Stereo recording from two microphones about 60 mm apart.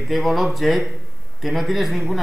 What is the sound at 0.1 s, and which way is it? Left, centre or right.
Speech, centre.